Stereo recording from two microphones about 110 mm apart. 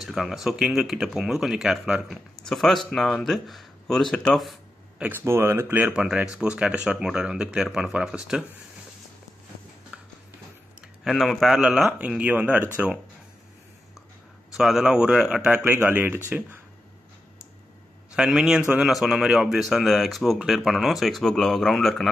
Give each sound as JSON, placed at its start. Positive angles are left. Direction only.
{"t": 0.0, "sound": "speech", "side_deg": 0}
{"t": 5.0, "sound": "speech", "side_deg": -20}
{"t": 5.9, "sound": "speech", "side_deg": -5}
{"t": 9.9, "sound": "music", "side_deg": -10}
{"t": 11.1, "sound": "speech", "side_deg": 0}
{"t": 12.2, "sound": "speech", "side_deg": -15}
{"t": 14.6, "sound": "speech", "side_deg": -5}
{"t": 15.6, "sound": "speech", "side_deg": -15}
{"t": 18.1, "sound": "speech", "side_deg": -5}